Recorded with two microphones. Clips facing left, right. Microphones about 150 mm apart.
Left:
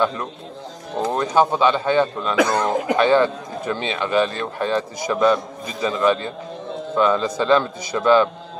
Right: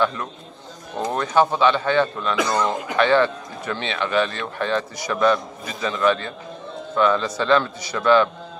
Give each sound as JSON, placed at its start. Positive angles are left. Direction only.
{"t": 1.1, "sound": "a man's voice", "side_deg": 15}
{"t": 2.3, "sound": "speech", "side_deg": 55}
{"t": 3.1, "sound": "a man's voice", "side_deg": 10}